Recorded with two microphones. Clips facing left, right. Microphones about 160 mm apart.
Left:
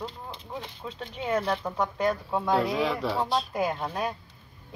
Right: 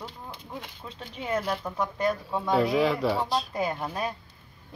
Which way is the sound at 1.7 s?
25° left (ahead or behind).